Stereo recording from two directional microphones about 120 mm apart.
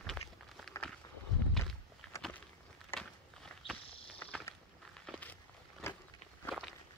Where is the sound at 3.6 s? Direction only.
50° left (ahead or behind).